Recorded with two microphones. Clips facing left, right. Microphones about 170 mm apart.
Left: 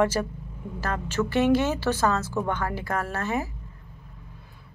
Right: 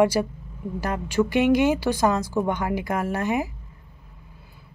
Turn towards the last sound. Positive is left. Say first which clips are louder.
# right 4 dB
turn(degrees=-15)  # may be behind; listen again after turning